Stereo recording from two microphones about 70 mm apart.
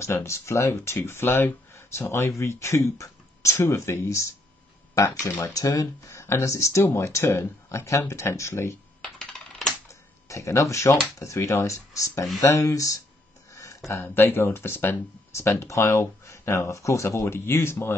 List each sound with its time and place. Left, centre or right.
0.0 s speech: left
9.0 s typing: centre
9.8 s typewriter: left
11.1 s speech: left
13.5 s a sound: left
14.0 s speech: left